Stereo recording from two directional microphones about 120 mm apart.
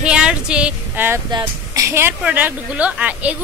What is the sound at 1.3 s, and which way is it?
A woman's voice, 30° right (ahead or behind).